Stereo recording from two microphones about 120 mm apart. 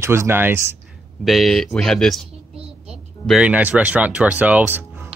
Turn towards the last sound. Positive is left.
turn(degrees=-15)  # may be behind; listen again after turning